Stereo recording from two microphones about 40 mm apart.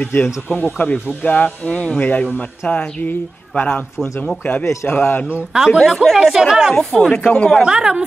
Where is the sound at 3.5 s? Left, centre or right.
Left.